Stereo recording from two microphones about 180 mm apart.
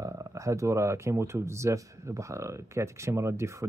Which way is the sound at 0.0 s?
15° right (ahead or behind).